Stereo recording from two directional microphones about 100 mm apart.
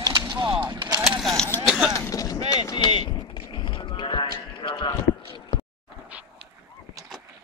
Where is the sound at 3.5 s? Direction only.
55° left (ahead or behind).